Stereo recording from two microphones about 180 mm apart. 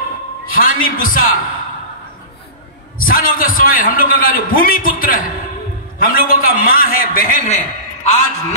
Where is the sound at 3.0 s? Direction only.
55° left (ahead or behind).